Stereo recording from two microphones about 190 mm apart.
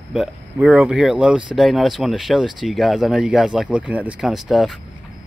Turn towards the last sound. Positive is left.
turn(degrees=0)  # may be behind; listen again after turning